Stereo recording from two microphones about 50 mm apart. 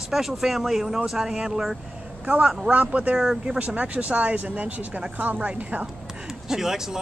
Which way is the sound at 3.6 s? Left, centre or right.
Right.